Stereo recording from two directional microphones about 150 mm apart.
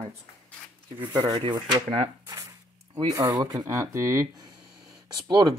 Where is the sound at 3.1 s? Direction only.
25° right (ahead or behind).